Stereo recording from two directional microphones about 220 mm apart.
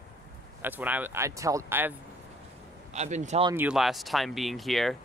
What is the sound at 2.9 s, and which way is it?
Speech, 30° right (ahead or behind).